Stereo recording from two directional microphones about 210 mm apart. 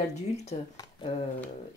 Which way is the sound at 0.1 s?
30° left (ahead or behind).